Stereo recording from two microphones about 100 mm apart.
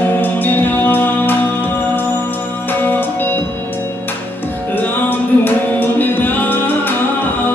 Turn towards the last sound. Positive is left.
turn(degrees=20)  # may be behind; listen again after turning